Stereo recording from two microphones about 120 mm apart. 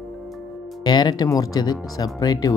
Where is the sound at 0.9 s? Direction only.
35° left (ahead or behind).